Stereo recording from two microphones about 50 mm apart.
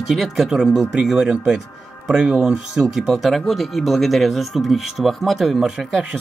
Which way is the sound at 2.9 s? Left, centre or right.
Centre.